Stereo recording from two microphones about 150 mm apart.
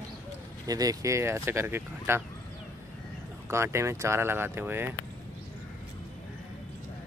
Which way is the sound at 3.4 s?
15° right (ahead or behind).